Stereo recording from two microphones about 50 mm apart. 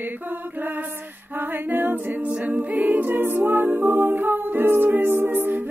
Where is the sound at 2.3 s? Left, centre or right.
Right.